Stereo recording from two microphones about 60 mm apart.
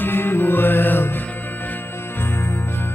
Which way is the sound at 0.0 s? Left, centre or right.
Left.